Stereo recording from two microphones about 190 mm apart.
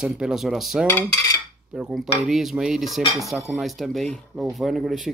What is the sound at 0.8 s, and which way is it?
Cutlery, 15° left (ahead or behind).